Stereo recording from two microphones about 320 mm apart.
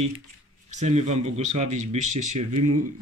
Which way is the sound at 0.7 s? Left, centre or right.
Right.